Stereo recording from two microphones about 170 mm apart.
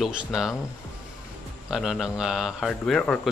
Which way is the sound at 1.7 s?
5° right (ahead or behind).